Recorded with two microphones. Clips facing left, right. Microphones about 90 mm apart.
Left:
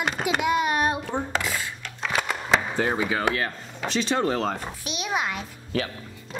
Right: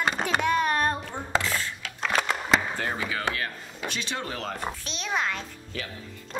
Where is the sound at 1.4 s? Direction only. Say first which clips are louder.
Even; 15° left (ahead or behind).